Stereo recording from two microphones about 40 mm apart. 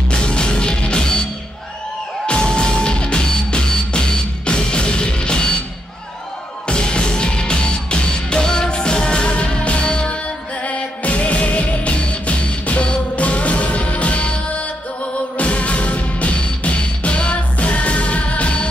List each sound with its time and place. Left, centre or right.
0.1 s music: left
2.2 s music: left
6.7 s music: left